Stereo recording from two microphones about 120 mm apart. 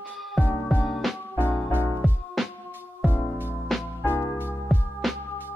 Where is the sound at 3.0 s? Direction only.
15° right (ahead or behind).